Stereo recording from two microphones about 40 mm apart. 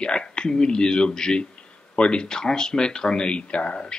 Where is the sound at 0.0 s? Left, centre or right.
Left.